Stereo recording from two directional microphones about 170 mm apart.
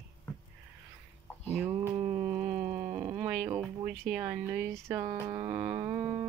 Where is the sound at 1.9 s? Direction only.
35° right (ahead or behind).